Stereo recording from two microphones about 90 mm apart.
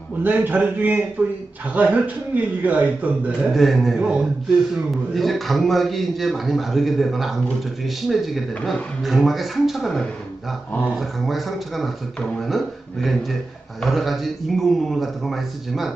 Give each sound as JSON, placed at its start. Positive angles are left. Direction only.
{"t": 0.2, "sound": "a man's voice", "side_deg": -20}
{"t": 3.5, "sound": "a man's voice", "side_deg": 0}
{"t": 4.0, "sound": "a man's voice", "side_deg": -10}
{"t": 5.1, "sound": "a man's voice", "side_deg": 0}